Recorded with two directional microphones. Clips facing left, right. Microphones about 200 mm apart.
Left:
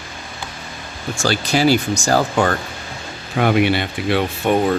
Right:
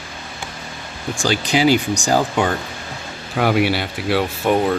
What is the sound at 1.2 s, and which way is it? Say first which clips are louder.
Speech: even; 15° right (ahead or behind).